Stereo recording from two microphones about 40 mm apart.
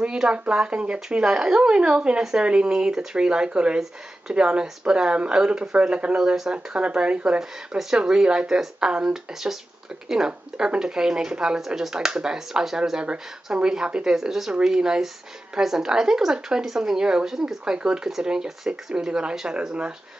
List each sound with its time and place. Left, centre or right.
0.0 s speech: right
1.2 s speech: centre
11.6 s speech: centre
11.9 s speech: centre